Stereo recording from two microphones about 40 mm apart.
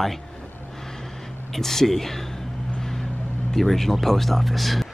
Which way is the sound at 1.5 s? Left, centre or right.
Centre.